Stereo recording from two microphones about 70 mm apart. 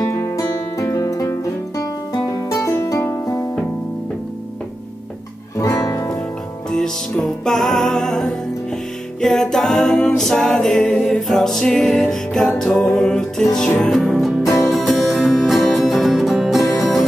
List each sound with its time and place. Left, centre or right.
0.0 s music: left
5.6 s music: left
6.7 s music: centre
13.9 s music: centre